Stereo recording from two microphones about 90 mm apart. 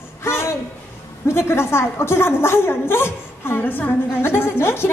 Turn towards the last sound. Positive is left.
turn(degrees=25)  # may be behind; listen again after turning